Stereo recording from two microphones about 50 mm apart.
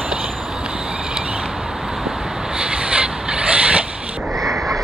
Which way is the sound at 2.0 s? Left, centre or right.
Centre.